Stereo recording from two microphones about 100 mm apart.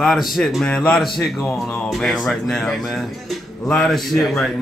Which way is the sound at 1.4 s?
25° left (ahead or behind).